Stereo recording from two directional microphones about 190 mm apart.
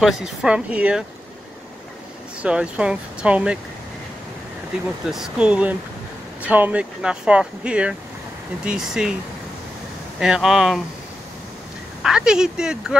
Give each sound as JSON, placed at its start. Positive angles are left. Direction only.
{"t": 0.0, "sound": "speech", "side_deg": -5}
{"t": 2.4, "sound": "speech", "side_deg": -5}
{"t": 4.7, "sound": "speech", "side_deg": -5}
{"t": 10.2, "sound": "speech", "side_deg": 0}
{"t": 12.0, "sound": "speech", "side_deg": -5}